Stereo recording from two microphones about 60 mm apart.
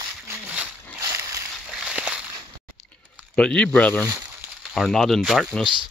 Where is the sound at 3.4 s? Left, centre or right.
Centre.